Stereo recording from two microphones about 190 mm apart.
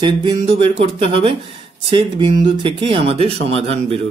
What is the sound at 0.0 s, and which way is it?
Speech, 25° right (ahead or behind).